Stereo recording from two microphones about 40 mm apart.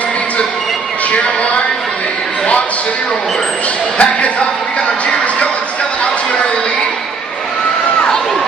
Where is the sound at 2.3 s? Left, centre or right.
Left.